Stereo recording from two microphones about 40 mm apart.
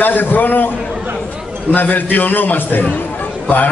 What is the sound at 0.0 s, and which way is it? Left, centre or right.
Speech, left.